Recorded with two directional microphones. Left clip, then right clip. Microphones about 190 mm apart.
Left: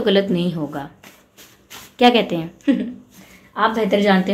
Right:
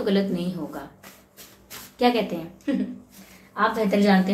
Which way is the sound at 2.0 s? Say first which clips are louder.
Left 7 dB; 50° left (ahead or behind).